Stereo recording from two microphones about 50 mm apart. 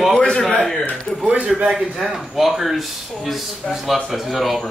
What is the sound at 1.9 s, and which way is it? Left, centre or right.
A man's voice, centre.